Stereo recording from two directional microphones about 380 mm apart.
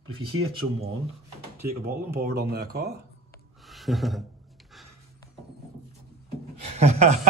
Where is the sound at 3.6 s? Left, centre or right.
Centre.